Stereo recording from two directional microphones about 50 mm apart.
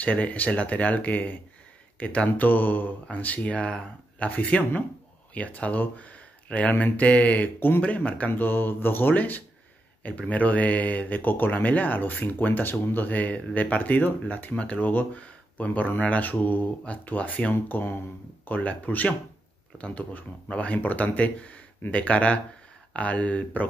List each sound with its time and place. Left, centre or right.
0.0 s speech: left
2.0 s speech: left
2.2 s speech: left
8.3 s speech: left
12.7 s speech: left
13.0 s speech: left